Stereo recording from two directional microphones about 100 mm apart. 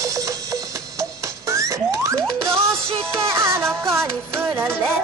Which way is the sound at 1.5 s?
30° right (ahead or behind).